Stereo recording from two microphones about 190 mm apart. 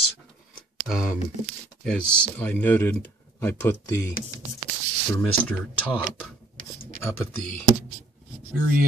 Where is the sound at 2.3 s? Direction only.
10° left (ahead or behind).